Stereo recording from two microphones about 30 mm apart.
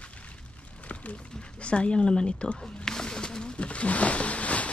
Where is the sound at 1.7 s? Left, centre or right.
Centre.